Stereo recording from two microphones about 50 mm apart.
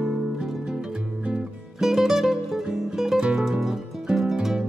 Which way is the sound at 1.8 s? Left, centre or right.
Centre.